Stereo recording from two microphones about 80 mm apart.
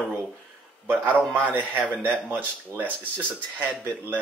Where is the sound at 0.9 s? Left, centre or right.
Right.